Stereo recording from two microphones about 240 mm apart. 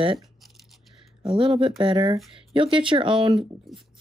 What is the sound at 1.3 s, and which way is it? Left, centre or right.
Speech, right.